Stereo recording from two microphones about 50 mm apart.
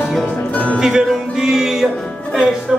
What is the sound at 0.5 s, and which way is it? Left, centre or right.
Music, left.